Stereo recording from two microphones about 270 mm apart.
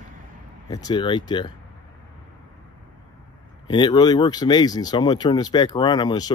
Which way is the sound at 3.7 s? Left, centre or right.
Centre.